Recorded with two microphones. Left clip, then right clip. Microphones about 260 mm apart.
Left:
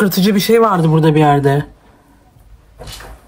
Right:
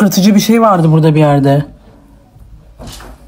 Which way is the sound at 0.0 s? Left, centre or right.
Centre.